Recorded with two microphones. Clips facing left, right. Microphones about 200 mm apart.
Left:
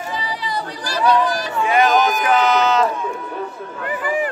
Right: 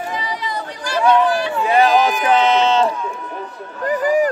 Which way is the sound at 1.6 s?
35° right (ahead or behind).